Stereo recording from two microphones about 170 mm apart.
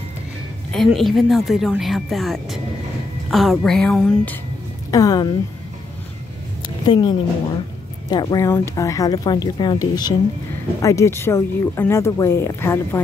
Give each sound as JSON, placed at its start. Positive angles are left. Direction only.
{"t": 0.7, "sound": "speech", "side_deg": 0}
{"t": 4.9, "sound": "speech", "side_deg": 25}
{"t": 6.9, "sound": "speech", "side_deg": 25}